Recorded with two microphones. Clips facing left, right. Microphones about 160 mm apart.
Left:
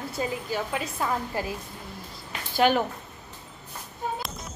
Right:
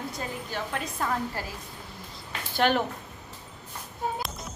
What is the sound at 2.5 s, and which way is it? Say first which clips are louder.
Speech: left 2 dB; 5° left (ahead or behind).